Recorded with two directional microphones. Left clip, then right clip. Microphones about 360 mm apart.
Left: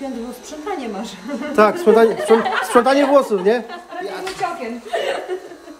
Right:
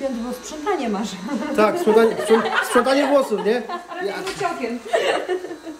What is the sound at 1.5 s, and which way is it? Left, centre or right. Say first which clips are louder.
Speech: left 3 dB; centre.